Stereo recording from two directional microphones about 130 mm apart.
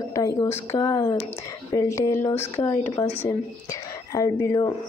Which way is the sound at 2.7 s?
50° left (ahead or behind).